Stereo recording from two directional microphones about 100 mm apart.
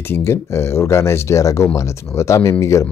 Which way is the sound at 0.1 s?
25° left (ahead or behind).